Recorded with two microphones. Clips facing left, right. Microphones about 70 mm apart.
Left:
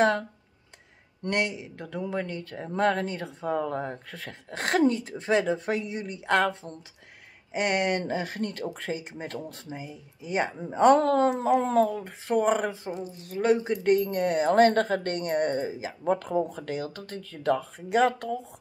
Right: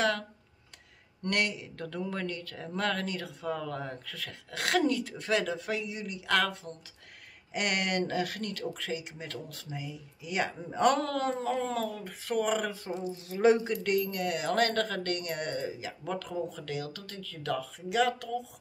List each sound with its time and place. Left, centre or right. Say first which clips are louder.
1.2 s speech: left 3 dB; left
13.1 s a woman's voice: even; centre
13.8 s speech: left 9 dB; left